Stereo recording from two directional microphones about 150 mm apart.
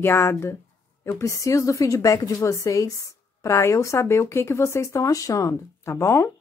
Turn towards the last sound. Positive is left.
turn(degrees=20)  # may be behind; listen again after turning